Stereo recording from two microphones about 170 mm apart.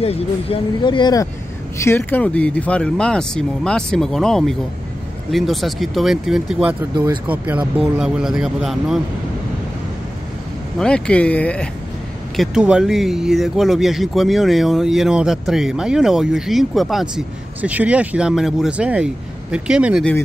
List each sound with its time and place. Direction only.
0.0 s speech: 35° left (ahead or behind); by 9.0 s centre (ahead or behind)
10.8 s speech: 5° left (ahead or behind)
12.4 s speech: 5° right (ahead or behind)